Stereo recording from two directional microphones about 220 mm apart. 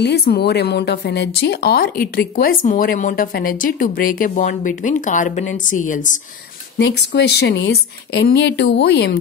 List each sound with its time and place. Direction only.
0.0 s speech: 50° left (ahead or behind)
6.8 s speech: 50° left (ahead or behind)